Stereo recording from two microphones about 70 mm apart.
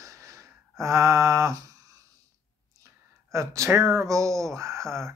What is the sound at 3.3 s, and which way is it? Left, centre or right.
Speech, right.